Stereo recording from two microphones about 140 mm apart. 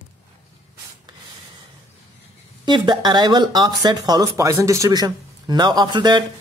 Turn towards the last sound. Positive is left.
turn(degrees=-30)  # may be behind; listen again after turning